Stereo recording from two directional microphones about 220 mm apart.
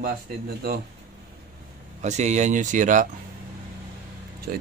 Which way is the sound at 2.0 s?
30° right (ahead or behind).